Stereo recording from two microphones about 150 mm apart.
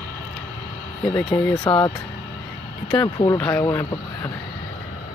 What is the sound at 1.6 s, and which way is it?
Speech, 35° left (ahead or behind).